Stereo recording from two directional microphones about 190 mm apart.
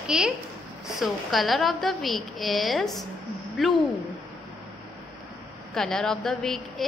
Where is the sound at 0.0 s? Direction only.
5° right (ahead or behind).